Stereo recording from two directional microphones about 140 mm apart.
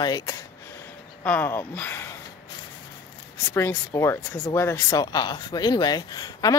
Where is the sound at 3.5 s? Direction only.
15° left (ahead or behind).